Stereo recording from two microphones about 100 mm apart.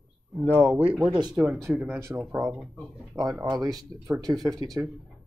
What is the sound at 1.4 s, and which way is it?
Speech, 30° right (ahead or behind).